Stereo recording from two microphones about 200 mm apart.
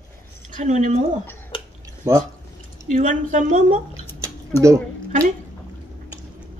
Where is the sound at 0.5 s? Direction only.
35° right (ahead or behind).